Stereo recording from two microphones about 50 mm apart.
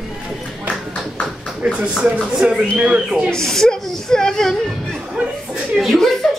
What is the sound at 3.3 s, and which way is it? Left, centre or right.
Speech, centre.